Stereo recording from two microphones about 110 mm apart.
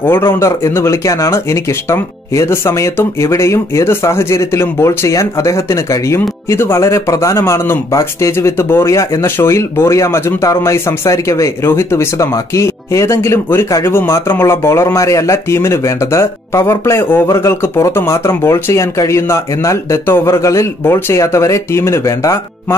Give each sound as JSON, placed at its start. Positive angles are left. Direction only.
{"t": 0.0, "sound": "speech", "side_deg": 20}